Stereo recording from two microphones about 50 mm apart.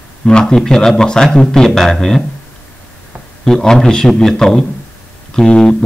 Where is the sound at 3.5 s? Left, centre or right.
Centre.